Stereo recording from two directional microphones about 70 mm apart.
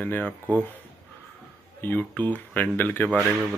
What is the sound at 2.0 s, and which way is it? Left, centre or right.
Speech, left.